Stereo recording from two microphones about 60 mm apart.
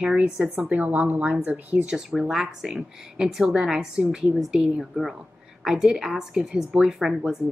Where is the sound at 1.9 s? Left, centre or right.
Centre.